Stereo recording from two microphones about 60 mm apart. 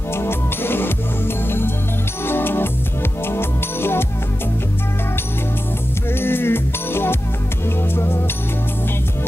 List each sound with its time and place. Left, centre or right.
0.1 s music: left
6.1 s music: left